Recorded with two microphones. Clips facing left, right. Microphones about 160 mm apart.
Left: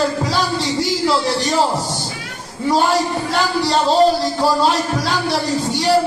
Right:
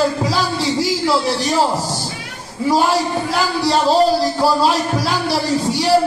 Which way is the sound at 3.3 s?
5° right (ahead or behind).